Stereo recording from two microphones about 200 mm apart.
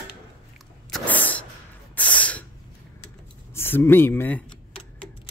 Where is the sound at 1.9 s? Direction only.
10° left (ahead or behind).